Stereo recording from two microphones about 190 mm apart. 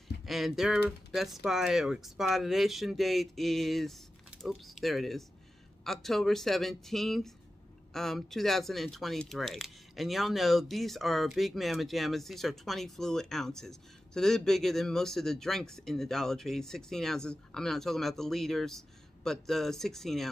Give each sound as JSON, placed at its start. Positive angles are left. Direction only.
{"t": 0.2, "sound": "speech", "side_deg": 0}